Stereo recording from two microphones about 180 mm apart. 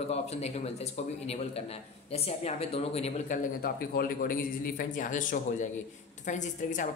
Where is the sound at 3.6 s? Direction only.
55° left (ahead or behind).